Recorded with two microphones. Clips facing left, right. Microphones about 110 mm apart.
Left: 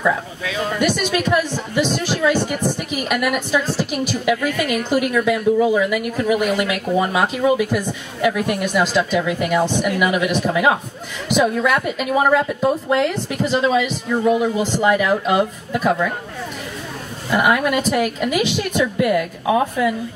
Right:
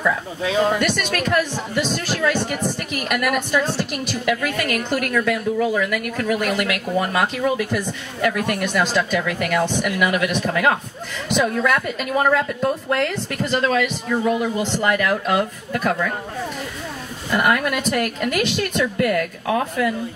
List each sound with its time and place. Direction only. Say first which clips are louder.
0.4 s speech: right 5 dB; 30° right (ahead or behind)
0.7 s speech: left 3 dB; 5° left (ahead or behind)
17.3 s speech: left 2 dB; 5° left (ahead or behind)